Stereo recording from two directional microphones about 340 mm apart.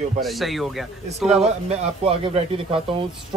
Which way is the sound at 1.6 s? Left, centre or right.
Centre.